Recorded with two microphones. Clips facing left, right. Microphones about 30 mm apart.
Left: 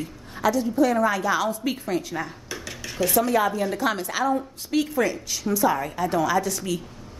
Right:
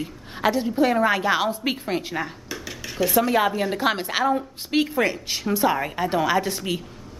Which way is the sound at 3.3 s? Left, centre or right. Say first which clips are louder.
Right 1 dB; right.